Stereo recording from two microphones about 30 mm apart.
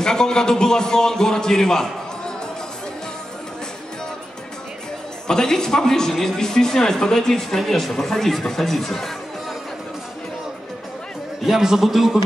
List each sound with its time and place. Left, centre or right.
0.0 s a man's voice: left
5.3 s a man's voice: left
11.4 s a man's voice: centre